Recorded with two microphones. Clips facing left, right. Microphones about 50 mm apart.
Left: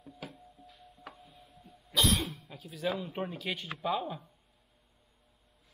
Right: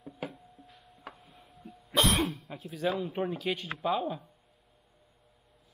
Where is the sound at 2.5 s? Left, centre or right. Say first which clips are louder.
Right 5 dB; centre.